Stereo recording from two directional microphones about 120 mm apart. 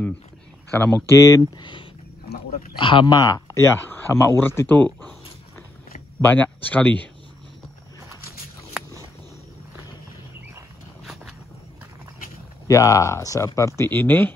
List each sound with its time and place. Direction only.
0.7 s speech: 15° left (ahead or behind)
1.1 s speech: 25° left (ahead or behind)
1.6 s a sound: 45° left (ahead or behind)
2.8 s speech: 45° left (ahead or behind); by 5.1 s 15° left (ahead or behind)
6.2 s speech: 15° left (ahead or behind)
12.6 s speech: 25° left (ahead or behind)